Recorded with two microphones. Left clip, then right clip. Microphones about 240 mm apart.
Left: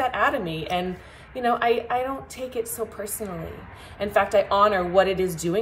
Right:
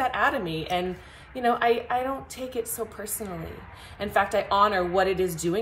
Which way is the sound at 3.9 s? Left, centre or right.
Centre.